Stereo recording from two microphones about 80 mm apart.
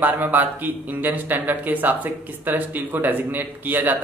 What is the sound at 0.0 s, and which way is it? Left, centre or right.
Speech, right.